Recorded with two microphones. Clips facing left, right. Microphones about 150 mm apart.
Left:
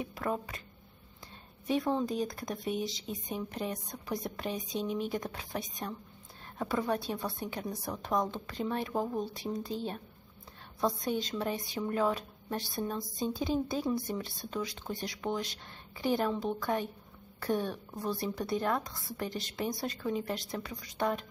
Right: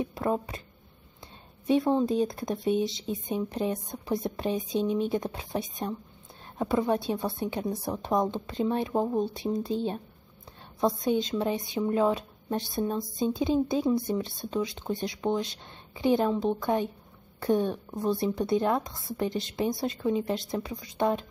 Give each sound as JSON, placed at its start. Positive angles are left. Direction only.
{"t": 0.0, "sound": "speech", "side_deg": -30}
{"t": 1.7, "sound": "speech", "side_deg": -25}
{"t": 10.8, "sound": "speech", "side_deg": -25}